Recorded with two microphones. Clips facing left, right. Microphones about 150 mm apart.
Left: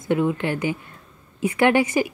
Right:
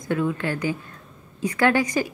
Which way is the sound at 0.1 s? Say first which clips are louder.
Left 3 dB; 20° left (ahead or behind).